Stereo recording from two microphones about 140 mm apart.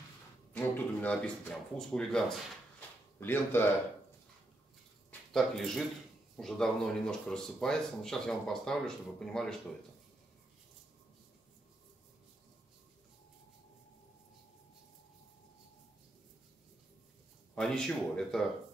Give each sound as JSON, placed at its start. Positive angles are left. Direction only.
{"t": 0.5, "sound": "speech", "side_deg": 10}
{"t": 3.2, "sound": "speech", "side_deg": 15}
{"t": 5.3, "sound": "speech", "side_deg": 0}
{"t": 17.6, "sound": "speech", "side_deg": 5}